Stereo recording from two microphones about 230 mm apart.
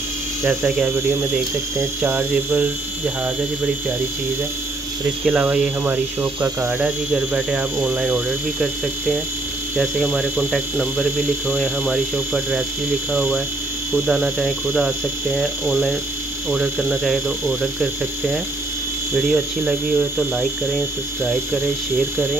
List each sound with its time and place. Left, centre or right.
0.4 s hum: centre
5.2 s speech: centre
6.4 s hum: centre
9.8 s speech: centre
19.1 s hum: centre